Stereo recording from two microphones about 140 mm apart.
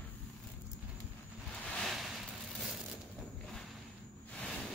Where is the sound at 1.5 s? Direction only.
5° left (ahead or behind).